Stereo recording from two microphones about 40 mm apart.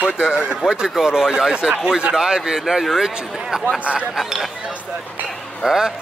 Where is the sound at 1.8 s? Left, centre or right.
Centre.